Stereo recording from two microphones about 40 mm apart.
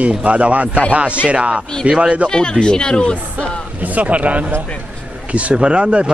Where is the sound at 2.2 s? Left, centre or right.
Centre.